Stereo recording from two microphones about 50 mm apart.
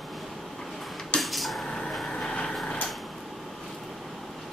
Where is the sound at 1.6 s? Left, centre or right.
Centre.